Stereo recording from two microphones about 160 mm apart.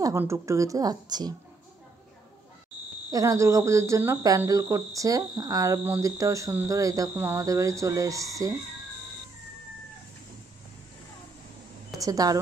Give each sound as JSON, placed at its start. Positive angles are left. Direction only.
{"t": 0.0, "sound": "speech", "side_deg": -15}
{"t": 3.1, "sound": "speech", "side_deg": -20}
{"t": 12.0, "sound": "speech", "side_deg": -20}